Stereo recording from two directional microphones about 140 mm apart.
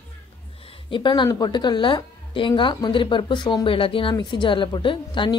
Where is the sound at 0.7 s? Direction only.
35° left (ahead or behind).